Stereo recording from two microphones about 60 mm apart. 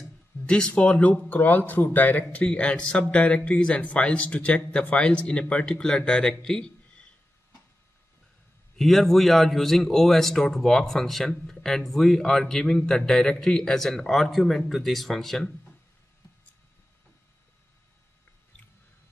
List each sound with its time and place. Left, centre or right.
0.5 s speech: centre
8.7 s a man's voice: centre